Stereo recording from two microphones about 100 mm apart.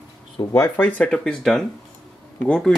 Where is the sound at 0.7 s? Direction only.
15° left (ahead or behind).